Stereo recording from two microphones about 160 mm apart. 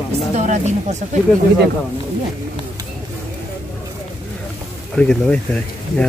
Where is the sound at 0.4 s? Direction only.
45° right (ahead or behind).